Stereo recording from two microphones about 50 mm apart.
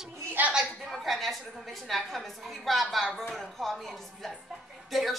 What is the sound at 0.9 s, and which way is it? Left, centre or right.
Speech, centre.